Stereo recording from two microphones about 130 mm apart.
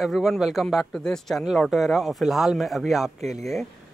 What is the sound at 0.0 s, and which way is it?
Speech, centre (ahead or behind).